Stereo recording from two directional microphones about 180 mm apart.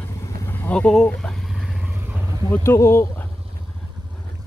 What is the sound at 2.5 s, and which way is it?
Speech, 15° left (ahead or behind).